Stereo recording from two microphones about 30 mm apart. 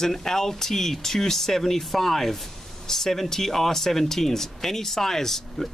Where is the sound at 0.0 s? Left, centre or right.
Centre.